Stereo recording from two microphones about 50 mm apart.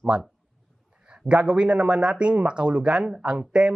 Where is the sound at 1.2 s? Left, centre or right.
Right.